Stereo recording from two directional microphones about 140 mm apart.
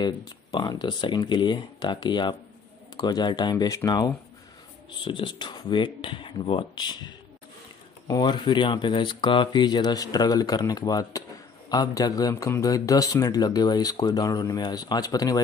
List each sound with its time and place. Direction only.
0.0 s speech: 30° left (ahead or behind)